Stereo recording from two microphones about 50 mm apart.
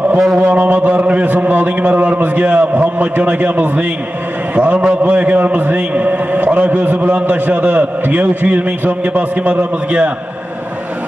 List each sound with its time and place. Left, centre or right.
0.4 s a man's voice: right